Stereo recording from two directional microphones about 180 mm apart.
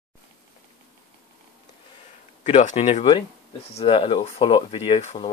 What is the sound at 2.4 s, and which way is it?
Speech, 40° left (ahead or behind).